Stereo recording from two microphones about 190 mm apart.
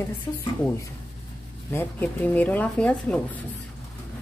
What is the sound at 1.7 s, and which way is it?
Speech, 10° left (ahead or behind).